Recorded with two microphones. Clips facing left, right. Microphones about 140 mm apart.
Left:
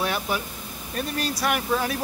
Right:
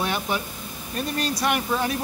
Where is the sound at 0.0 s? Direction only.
Centre (ahead or behind).